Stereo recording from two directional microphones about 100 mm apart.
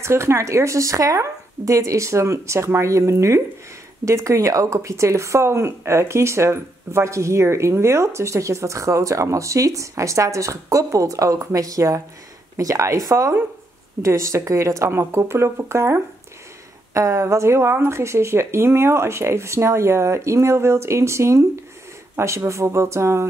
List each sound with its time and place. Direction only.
0.0 s speech: 30° right (ahead or behind)